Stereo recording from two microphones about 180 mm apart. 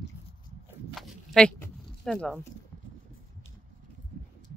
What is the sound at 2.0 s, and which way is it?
Speech, 5° left (ahead or behind).